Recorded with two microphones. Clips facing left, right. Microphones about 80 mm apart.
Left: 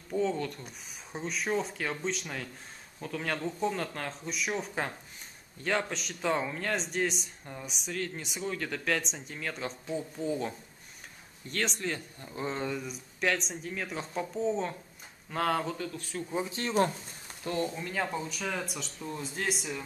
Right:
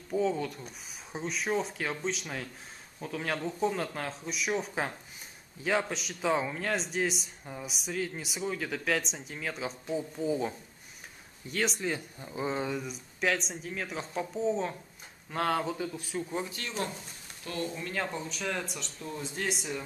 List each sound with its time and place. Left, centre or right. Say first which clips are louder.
0.1 s speech: right 1 dB; centre
16.6 s speech: left 8 dB; left
17.5 s speech: left 3 dB; left
17.8 s speech: left 1 dB; centre